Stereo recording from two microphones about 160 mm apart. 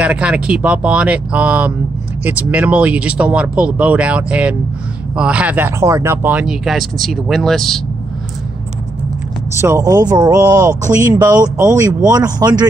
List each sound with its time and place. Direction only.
0.0 s speech: 5° right (ahead or behind)
9.6 s speech: 20° right (ahead or behind)